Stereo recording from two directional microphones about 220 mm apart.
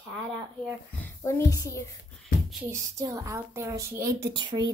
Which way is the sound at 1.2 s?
15° left (ahead or behind).